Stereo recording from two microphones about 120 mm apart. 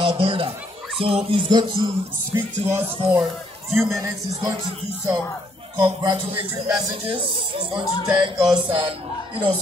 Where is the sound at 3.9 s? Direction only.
20° right (ahead or behind).